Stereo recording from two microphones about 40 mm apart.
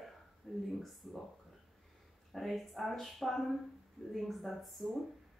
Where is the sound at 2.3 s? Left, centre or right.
Centre.